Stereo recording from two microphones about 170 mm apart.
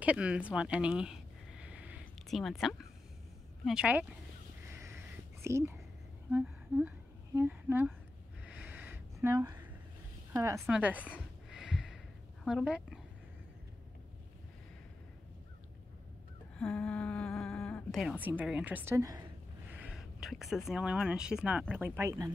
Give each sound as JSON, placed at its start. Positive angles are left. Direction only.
{"t": 0.0, "sound": "a sound", "side_deg": -5}
{"t": 3.6, "sound": "a woman's voice", "side_deg": -5}
{"t": 5.4, "sound": "a woman's voice", "side_deg": -15}
{"t": 6.3, "sound": "humming", "side_deg": -10}
{"t": 7.3, "sound": "a woman's voice", "side_deg": -10}
{"t": 8.5, "sound": "a sound", "side_deg": -5}
{"t": 10.3, "sound": "a woman's voice", "side_deg": -20}
{"t": 10.7, "sound": "a sound", "side_deg": -10}
{"t": 12.4, "sound": "speech", "side_deg": -5}
{"t": 16.5, "sound": "a sound", "side_deg": 5}
{"t": 18.2, "sound": "a woman's voice", "side_deg": -10}
{"t": 19.7, "sound": "speech", "side_deg": -5}